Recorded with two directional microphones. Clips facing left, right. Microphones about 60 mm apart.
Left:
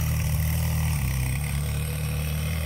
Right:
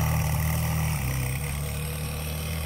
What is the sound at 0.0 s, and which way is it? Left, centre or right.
Vehicle, right.